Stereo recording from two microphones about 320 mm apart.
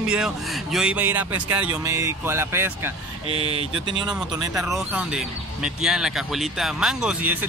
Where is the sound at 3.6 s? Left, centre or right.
Right.